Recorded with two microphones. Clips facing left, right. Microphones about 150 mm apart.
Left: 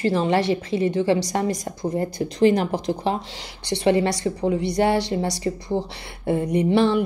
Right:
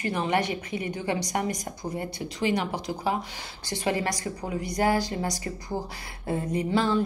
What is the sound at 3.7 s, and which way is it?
A woman's voice, 25° left (ahead or behind).